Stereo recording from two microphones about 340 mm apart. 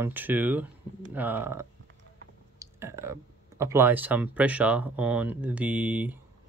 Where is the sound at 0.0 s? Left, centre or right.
Centre.